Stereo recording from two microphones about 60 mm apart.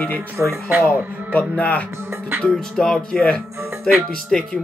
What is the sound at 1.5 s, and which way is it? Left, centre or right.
Speech, left.